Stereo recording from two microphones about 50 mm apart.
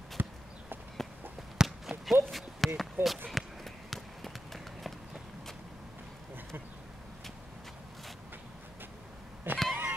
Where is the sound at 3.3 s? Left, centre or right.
Centre.